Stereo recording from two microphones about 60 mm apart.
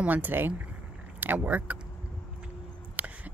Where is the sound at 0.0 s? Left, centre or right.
Right.